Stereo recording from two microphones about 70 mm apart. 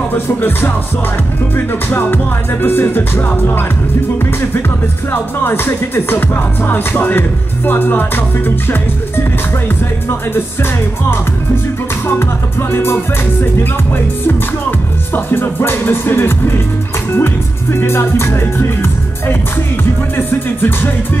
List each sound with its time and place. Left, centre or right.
0.4 s music: left
12.2 s music: left
15.1 s music: left